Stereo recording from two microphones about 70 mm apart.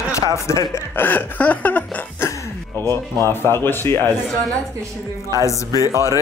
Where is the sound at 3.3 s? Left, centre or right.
Left.